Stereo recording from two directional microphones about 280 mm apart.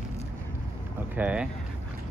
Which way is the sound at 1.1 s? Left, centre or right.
Centre.